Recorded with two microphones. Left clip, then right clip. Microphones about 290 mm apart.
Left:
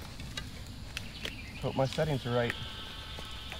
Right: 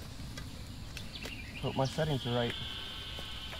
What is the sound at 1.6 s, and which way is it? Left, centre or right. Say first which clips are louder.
Speech: left 2 dB; centre.